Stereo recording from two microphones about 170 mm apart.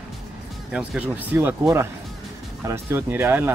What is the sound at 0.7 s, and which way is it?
Speech, 10° right (ahead or behind).